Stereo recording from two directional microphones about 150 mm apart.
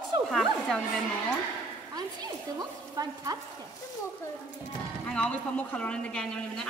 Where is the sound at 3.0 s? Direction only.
25° right (ahead or behind).